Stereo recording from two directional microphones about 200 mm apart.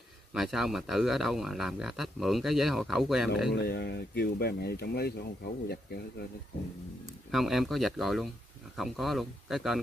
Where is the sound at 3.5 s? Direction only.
55° left (ahead or behind).